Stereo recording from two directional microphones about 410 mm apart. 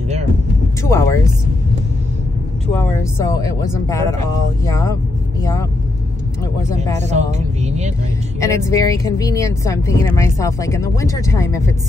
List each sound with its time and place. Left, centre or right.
0.8 s a sound: centre
2.7 s speech: centre
7.0 s speech: centre
8.4 s speech: centre